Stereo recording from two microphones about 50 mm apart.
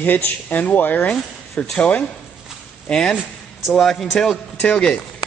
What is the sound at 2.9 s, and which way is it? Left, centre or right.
A man's voice, centre.